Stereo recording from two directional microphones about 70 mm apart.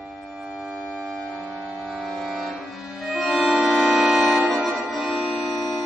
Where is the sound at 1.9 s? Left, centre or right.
Centre.